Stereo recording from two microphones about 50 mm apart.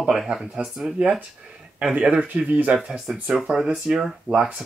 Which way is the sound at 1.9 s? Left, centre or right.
Right.